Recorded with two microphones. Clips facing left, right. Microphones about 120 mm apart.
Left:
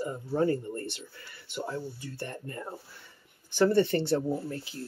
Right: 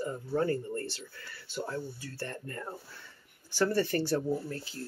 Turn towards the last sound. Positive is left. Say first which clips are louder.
# left 1 dB
turn(degrees=20)  # may be behind; listen again after turning